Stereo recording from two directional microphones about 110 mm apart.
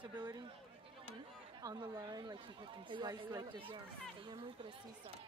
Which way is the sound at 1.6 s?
30° right (ahead or behind).